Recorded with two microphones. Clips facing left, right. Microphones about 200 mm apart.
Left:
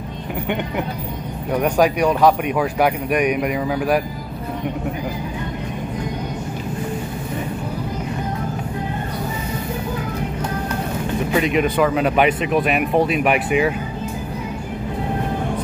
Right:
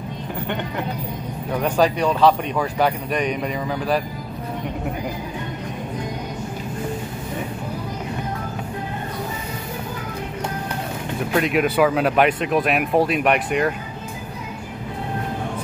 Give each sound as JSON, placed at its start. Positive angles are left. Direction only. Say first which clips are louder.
{"t": 1.5, "sound": "speech", "louder": "left 2 dB", "side_deg": 10}
{"t": 11.3, "sound": "speech", "louder": "even", "side_deg": 0}